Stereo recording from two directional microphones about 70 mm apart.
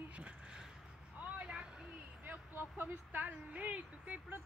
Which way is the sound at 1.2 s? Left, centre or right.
Centre.